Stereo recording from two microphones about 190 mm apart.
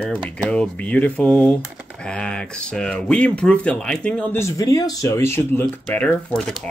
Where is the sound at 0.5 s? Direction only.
5° left (ahead or behind).